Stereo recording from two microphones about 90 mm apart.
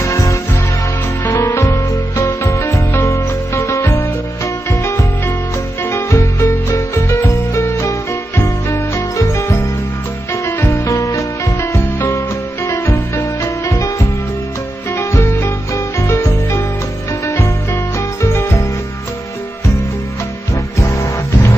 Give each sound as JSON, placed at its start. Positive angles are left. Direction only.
{"t": 0.0, "sound": "music", "side_deg": 35}
{"t": 18.2, "sound": "music", "side_deg": 30}
{"t": 20.9, "sound": "music", "side_deg": 35}